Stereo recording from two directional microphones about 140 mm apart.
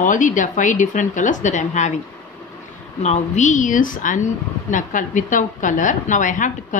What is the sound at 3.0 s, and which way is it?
A woman's voice, 55° left (ahead or behind).